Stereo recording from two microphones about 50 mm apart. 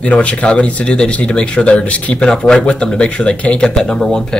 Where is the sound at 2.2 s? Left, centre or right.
Centre.